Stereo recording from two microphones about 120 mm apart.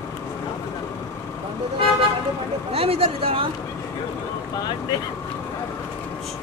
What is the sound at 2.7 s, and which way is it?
Speech, 55° right (ahead or behind).